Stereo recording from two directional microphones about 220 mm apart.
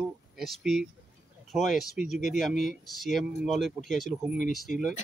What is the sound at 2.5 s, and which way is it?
Speech, 35° left (ahead or behind).